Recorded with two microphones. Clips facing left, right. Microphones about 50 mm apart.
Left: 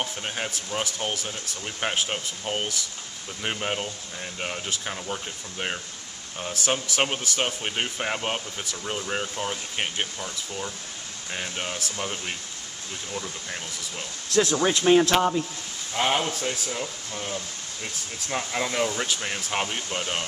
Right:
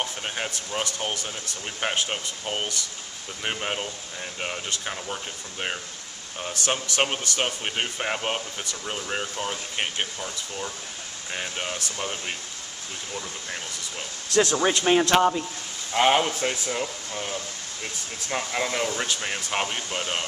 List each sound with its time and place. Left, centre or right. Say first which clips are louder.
0.0 s a man's voice: even; centre